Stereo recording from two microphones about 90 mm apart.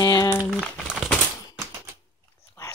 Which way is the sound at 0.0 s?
40° left (ahead or behind).